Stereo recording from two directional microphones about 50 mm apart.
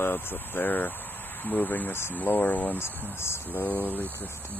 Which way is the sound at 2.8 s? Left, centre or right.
Left.